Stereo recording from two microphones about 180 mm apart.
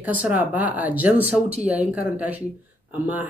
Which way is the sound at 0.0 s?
10° right (ahead or behind).